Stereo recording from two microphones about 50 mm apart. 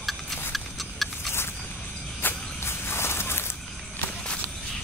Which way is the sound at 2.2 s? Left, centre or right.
Left.